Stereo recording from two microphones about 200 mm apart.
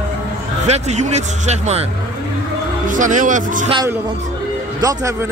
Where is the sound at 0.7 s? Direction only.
35° right (ahead or behind).